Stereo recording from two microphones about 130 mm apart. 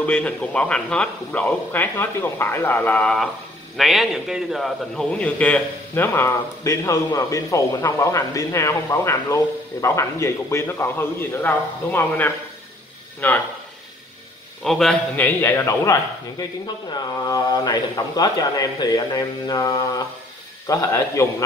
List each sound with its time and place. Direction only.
0.0 s a man's voice: 10° left (ahead or behind)
3.7 s a man's voice: centre (ahead or behind)
14.6 s a man's voice: 5° left (ahead or behind)
15.2 s a man's voice: 20° left (ahead or behind)